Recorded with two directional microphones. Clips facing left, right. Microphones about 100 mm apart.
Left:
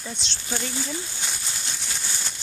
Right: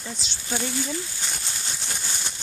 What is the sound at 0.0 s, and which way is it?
Speech, 5° right (ahead or behind).